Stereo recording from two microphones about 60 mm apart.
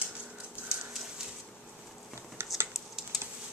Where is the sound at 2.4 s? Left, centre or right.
Right.